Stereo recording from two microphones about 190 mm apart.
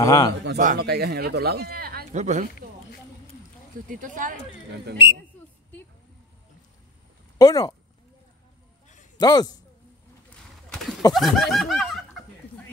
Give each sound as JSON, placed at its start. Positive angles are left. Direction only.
{"t": 0.0, "sound": "a man's voice", "side_deg": 20}
{"t": 0.6, "sound": "speech", "side_deg": -50}
{"t": 2.1, "sound": "speech", "side_deg": -40}
{"t": 3.9, "sound": "speech", "side_deg": -45}
{"t": 5.0, "sound": "a man's voice", "side_deg": 25}
{"t": 7.3, "sound": "speech", "side_deg": 20}
{"t": 9.2, "sound": "a man's voice", "side_deg": 20}
{"t": 11.1, "sound": "snicker", "side_deg": 0}